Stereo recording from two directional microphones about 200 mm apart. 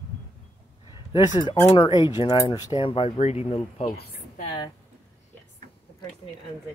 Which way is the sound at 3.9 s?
50° left (ahead or behind).